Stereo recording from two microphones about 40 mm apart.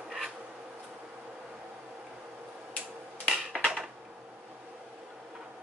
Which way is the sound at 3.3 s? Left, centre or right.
Centre.